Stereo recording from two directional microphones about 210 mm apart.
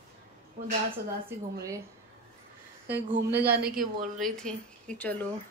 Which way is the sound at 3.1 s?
50° right (ahead or behind).